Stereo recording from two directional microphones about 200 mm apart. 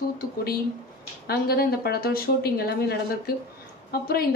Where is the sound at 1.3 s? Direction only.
50° left (ahead or behind).